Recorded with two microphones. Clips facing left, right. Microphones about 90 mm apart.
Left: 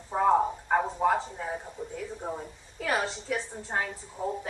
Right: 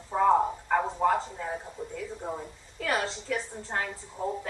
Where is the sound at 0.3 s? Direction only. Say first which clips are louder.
Even; 5° right (ahead or behind).